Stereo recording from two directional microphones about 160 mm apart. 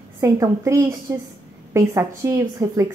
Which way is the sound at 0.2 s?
20° right (ahead or behind).